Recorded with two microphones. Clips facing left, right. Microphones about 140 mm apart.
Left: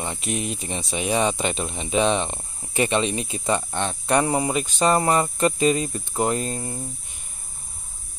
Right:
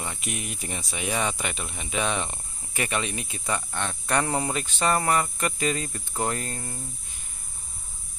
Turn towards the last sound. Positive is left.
turn(degrees=20)  # may be behind; listen again after turning